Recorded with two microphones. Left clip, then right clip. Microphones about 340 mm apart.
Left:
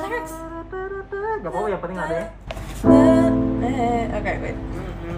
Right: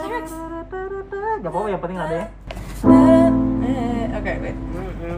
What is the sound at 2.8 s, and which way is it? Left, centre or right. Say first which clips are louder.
Music: right 1 dB; centre.